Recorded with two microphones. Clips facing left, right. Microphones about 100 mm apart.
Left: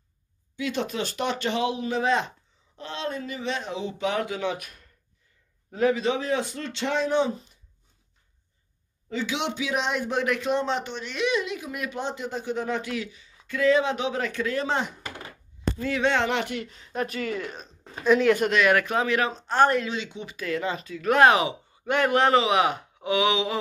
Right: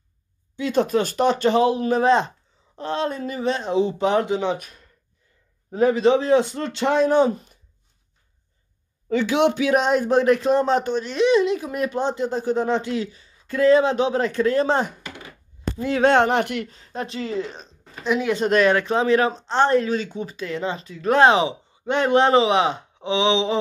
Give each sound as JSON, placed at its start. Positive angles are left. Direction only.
{"t": 0.6, "sound": "speech", "side_deg": -40}
{"t": 5.7, "sound": "speech", "side_deg": -35}
{"t": 9.1, "sound": "speech", "side_deg": -50}
{"t": 16.1, "sound": "speech", "side_deg": -50}
{"t": 16.6, "sound": "speech", "side_deg": -35}
{"t": 18.0, "sound": "speech", "side_deg": -15}
{"t": 18.7, "sound": "speech", "side_deg": -30}
{"t": 19.8, "sound": "speech", "side_deg": -40}
{"t": 20.3, "sound": "speech", "side_deg": -25}